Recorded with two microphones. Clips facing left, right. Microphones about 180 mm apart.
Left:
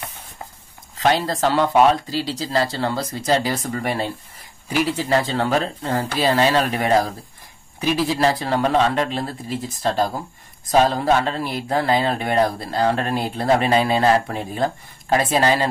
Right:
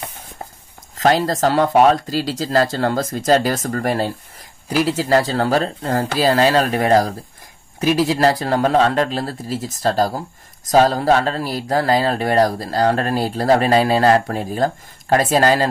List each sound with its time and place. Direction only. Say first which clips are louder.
0.9 s speech: right 3 dB; 45° right (ahead or behind)